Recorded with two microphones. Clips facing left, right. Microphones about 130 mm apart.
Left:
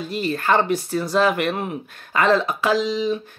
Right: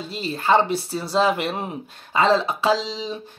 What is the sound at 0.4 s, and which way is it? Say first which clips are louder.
Speech: right 2 dB; 20° right (ahead or behind).